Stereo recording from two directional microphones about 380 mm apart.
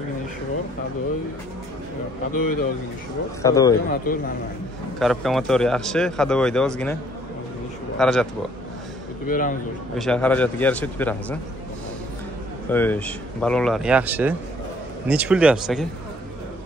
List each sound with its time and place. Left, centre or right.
2.3 s a man's voice: left
3.4 s speech: centre
4.1 s a man's voice: left
4.9 s speech: centre
8.0 s speech: centre
9.3 s a man's voice: left
9.9 s speech: centre
12.7 s speech: centre